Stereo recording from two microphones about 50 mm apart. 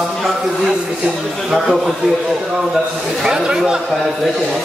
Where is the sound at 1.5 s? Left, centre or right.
Centre.